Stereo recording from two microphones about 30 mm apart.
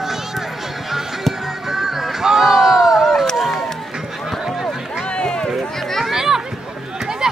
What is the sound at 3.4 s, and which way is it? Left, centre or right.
Run, centre.